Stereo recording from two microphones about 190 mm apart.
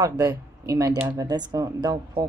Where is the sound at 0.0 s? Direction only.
15° right (ahead or behind).